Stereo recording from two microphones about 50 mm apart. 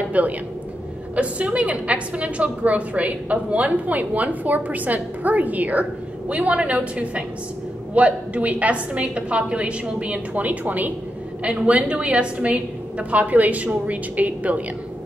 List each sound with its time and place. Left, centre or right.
0.2 s a woman's voice: right
11.4 s a woman's voice: right